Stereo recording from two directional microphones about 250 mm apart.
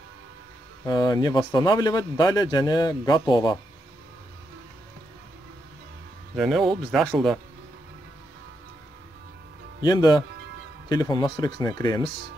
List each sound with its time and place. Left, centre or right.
0.8 s speech: centre
6.3 s speech: centre
9.8 s speech: centre